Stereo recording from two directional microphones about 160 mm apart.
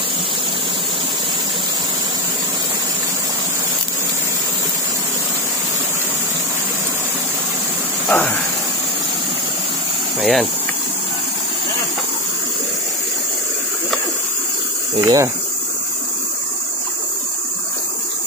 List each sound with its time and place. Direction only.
8.1 s a sound: 10° left (ahead or behind)
10.2 s speech: centre (ahead or behind)
15.0 s insect: 20° right (ahead or behind)